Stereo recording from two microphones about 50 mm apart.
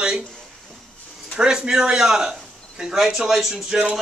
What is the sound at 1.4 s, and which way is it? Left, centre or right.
A man's voice, centre.